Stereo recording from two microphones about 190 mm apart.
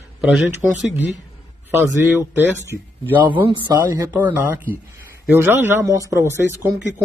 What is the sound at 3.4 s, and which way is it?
A man's voice, 25° right (ahead or behind).